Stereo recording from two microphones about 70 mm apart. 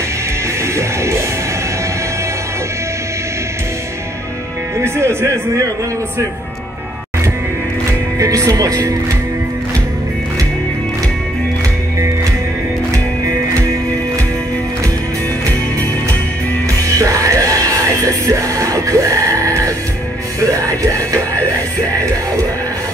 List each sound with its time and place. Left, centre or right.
4.7 s speech: right
8.2 s speech: right
17.0 s music: right